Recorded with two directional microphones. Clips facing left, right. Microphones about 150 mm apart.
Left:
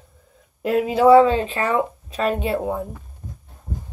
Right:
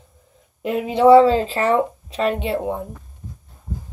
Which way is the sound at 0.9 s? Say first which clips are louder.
Right 2 dB; 30° right (ahead or behind).